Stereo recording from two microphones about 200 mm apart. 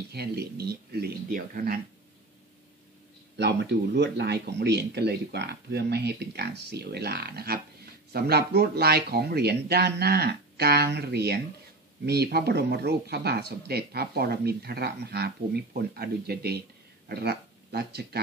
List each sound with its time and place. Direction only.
0.1 s speech: 50° right (ahead or behind)
3.3 s speech: 55° right (ahead or behind)